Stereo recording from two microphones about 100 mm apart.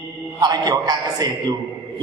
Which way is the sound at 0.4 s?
40° right (ahead or behind).